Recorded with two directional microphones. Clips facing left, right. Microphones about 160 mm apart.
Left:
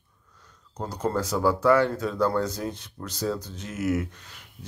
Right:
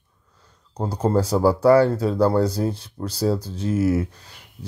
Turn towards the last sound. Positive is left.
turn(degrees=-35)  # may be behind; listen again after turning